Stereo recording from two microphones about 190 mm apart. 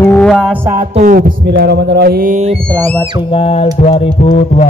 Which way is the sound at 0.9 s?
45° right (ahead or behind).